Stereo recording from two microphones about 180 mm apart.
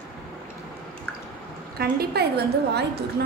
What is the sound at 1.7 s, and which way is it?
A woman's voice, 60° right (ahead or behind).